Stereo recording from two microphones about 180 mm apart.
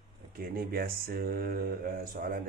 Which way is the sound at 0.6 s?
55° right (ahead or behind).